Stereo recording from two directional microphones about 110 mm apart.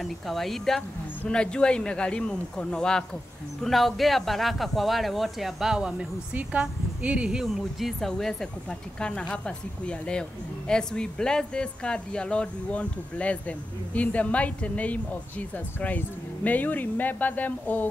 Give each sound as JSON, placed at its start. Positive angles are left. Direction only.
{"t": 0.0, "sound": "speech", "side_deg": 0}